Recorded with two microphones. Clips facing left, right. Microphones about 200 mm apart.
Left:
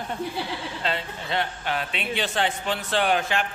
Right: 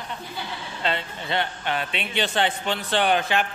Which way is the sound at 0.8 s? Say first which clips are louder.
Right 4 dB; centre (ahead or behind).